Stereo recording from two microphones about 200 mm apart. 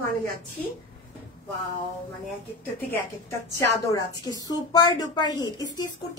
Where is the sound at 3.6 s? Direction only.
15° left (ahead or behind).